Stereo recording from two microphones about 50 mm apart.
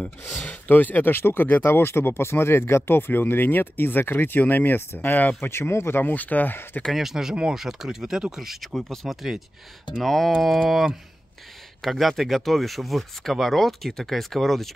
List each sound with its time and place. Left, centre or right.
0.4 s speech: left
1.7 s speech: left
5.5 s speech: left
5.9 s speech: left
6.9 s speech: centre
8.7 s speech: centre